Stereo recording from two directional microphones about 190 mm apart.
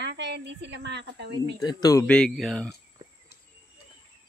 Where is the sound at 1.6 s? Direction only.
20° left (ahead or behind).